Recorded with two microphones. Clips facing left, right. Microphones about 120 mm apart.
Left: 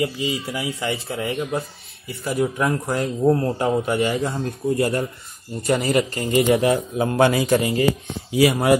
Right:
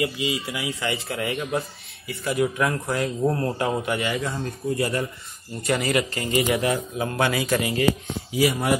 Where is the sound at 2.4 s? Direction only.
35° left (ahead or behind).